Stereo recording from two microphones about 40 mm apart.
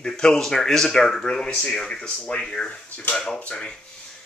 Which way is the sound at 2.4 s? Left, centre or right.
Centre.